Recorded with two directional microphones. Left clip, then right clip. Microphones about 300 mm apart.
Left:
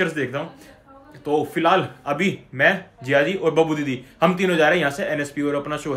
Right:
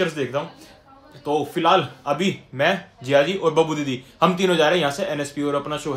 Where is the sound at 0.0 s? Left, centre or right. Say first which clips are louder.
Even; centre.